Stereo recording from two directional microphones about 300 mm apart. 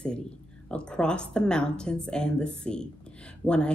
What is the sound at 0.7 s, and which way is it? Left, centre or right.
Speech, centre.